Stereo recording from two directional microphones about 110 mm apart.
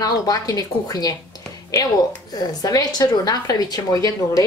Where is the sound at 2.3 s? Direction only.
35° left (ahead or behind).